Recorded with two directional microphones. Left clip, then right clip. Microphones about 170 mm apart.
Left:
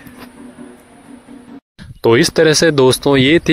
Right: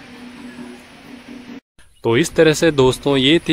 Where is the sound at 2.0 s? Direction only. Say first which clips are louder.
Left 3 dB; 30° left (ahead or behind).